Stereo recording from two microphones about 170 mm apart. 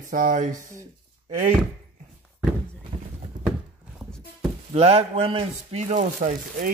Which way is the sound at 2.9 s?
35° right (ahead or behind).